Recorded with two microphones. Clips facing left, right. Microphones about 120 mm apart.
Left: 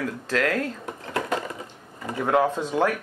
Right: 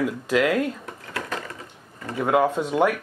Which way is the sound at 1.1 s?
25° left (ahead or behind).